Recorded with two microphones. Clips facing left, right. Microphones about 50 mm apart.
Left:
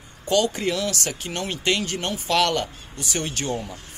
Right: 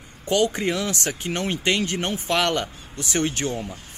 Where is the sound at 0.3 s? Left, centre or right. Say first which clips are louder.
Even; right.